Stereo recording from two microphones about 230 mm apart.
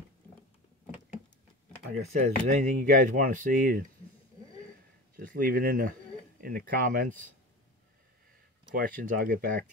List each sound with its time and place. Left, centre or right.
2.0 s speech: right
5.1 s speech: right
8.8 s speech: right